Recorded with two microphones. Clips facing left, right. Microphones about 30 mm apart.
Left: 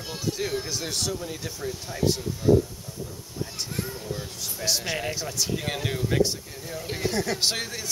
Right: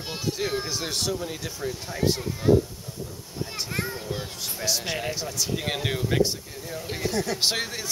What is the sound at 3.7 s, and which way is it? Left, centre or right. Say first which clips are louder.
Speech: right 3 dB; right.